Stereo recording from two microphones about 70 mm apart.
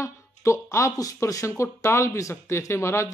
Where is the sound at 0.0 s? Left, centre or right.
Left.